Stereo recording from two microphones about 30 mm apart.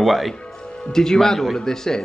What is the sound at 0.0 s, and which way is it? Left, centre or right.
Speech, centre.